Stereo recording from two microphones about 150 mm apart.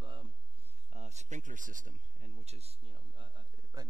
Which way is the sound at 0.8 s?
50° right (ahead or behind).